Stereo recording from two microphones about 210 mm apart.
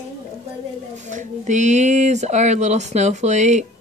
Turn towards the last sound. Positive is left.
turn(degrees=-35)  # may be behind; listen again after turning